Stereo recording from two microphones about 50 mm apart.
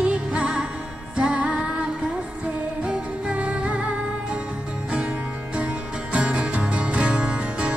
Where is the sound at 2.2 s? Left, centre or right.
Right.